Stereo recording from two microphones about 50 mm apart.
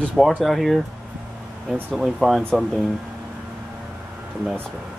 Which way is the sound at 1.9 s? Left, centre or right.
Centre.